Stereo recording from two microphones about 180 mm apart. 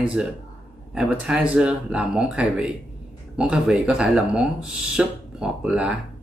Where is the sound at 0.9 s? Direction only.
5° right (ahead or behind).